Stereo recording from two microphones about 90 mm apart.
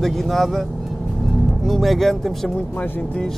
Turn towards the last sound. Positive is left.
turn(degrees=15)  # may be behind; listen again after turning